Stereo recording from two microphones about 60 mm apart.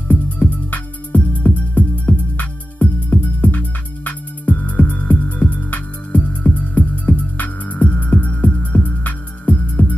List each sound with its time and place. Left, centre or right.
0.1 s music: left